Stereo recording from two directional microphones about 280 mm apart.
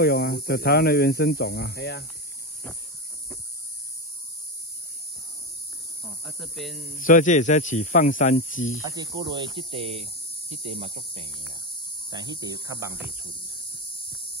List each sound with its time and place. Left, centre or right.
0.0 s speech: left
6.0 s speech: centre
7.0 s speech: left
8.8 s speech: centre